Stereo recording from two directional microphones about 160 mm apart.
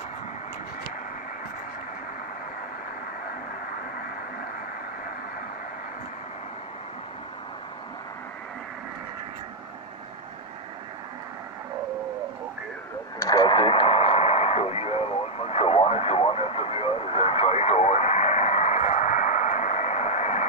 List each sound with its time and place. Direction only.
13.2 s radio: 25° left (ahead or behind); by 20.4 s 45° left (ahead or behind)